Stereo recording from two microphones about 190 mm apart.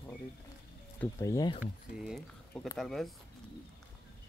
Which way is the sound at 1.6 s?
Centre (ahead or behind).